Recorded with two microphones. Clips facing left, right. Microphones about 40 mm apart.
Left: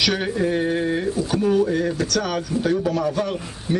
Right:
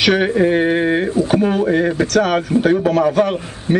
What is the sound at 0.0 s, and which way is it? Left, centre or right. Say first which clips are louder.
A man's voice: right 7 dB; right.